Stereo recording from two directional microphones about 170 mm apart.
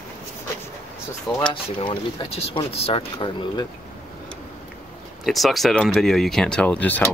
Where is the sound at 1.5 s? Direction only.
30° left (ahead or behind).